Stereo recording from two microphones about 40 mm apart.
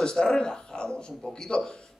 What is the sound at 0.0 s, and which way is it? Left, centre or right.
A man's voice, centre.